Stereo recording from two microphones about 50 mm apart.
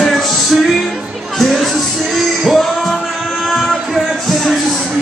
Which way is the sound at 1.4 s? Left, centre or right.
Centre.